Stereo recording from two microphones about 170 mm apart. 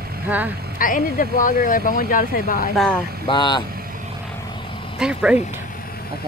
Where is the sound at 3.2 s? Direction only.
25° left (ahead or behind).